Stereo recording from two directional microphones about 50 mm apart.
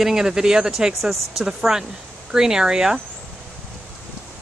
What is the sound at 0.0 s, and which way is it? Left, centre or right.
Speech, centre.